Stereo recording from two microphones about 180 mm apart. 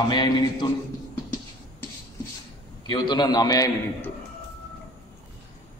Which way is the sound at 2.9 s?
25° left (ahead or behind).